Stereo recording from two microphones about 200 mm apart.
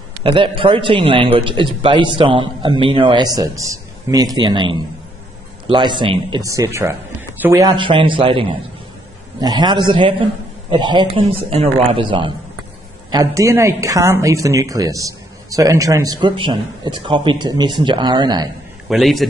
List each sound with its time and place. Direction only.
0.2 s a man's voice: 25° right (ahead or behind)
18.9 s a man's voice: centre (ahead or behind)